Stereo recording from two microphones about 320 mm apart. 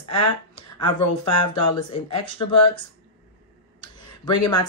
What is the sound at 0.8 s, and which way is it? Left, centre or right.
Speech, left.